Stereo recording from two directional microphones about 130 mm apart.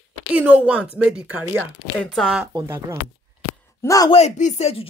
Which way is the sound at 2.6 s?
20° right (ahead or behind).